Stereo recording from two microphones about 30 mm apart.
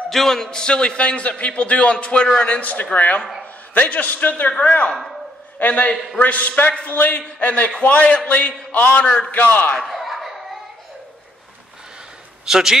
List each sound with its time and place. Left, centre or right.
0.1 s a man's voice: centre; by 2.8 s left
2.9 s a man's voice: left
4.6 s a man's voice: left
7.3 s a man's voice: left
9.3 s a man's voice: left
9.8 s a sound: centre
12.4 s a man's voice: centre